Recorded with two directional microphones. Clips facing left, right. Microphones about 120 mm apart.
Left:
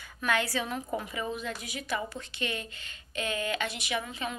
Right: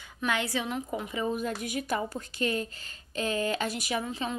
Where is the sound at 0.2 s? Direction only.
20° right (ahead or behind).